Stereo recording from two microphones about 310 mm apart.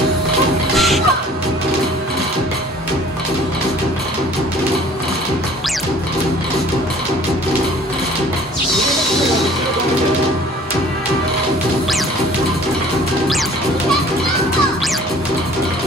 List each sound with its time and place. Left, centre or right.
0.7 s music: centre